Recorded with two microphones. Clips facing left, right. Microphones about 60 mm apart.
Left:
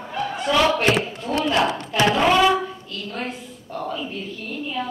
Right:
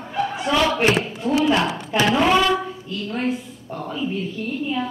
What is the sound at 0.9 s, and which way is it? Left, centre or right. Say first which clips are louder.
Speech: right 1 dB; centre.